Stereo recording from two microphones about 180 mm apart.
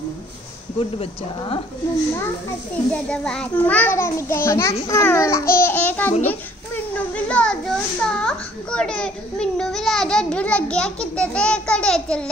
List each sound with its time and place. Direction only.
0.7 s speech: 30° left (ahead or behind)
2.9 s a child's voice: 5° left (ahead or behind)
7.2 s a child's voice: 5° left (ahead or behind)